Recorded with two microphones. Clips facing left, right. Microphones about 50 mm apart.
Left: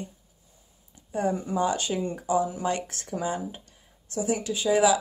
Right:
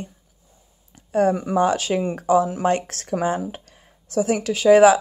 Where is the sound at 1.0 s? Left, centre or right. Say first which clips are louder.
Right 8 dB; right.